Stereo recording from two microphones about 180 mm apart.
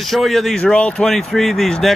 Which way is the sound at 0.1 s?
Centre (ahead or behind).